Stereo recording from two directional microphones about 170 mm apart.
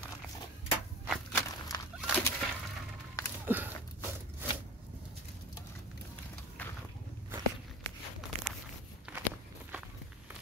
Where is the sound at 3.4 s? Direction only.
10° right (ahead or behind).